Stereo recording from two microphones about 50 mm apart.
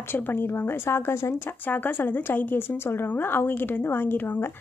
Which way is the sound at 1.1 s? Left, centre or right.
Left.